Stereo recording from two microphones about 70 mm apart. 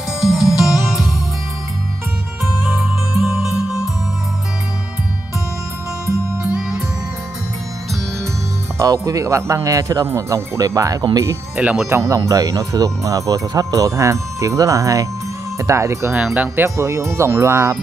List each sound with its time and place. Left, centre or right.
0.2 s music: centre
3.3 s music: centre
8.7 s speech: right
11.6 s speech: right
11.9 s speech: right